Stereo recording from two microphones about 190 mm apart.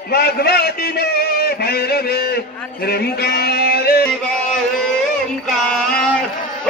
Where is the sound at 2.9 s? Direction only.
55° left (ahead or behind).